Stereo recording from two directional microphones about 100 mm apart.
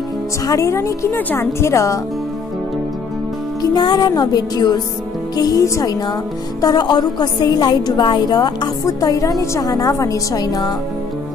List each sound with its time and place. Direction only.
0.5 s a woman's voice: 30° left (ahead or behind)
3.6 s music: 45° left (ahead or behind)
5.3 s a woman's voice: 40° left (ahead or behind)